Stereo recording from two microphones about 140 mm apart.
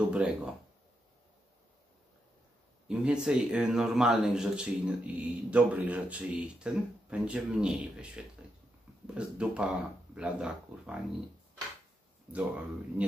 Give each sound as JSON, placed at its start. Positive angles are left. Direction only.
{"t": 0.1, "sound": "speech", "side_deg": -10}
{"t": 2.9, "sound": "speech", "side_deg": -5}
{"t": 12.3, "sound": "speech", "side_deg": -10}